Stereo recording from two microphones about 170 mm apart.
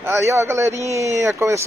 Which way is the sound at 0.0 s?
15° right (ahead or behind).